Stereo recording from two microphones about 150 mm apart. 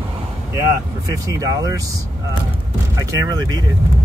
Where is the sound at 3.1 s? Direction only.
20° right (ahead or behind).